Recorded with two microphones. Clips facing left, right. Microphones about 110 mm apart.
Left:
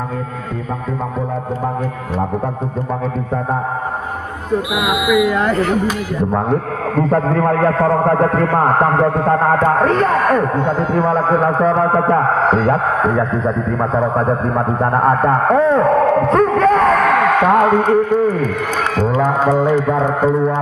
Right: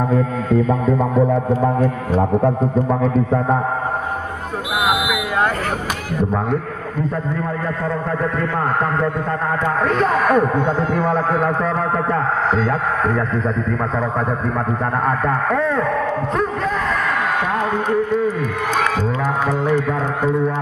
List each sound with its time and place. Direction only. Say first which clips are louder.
7.0 s a man's voice: left 8 dB; 75° left (ahead or behind); by 10.0 s 50° left (ahead or behind)
10.2 s speech: left 1 dB; 10° right (ahead or behind)
11.1 s a man's voice: left 5 dB; 40° left (ahead or behind)
15.0 s a man's voice: left 6 dB; 35° left (ahead or behind)
15.9 s a sound: left 8 dB; 55° left (ahead or behind)
19.1 s music: left 6 dB; 25° left (ahead or behind)
19.6 s a man's voice: left 4 dB; 10° left (ahead or behind)
20.0 s music: left 5 dB; 25° left (ahead or behind)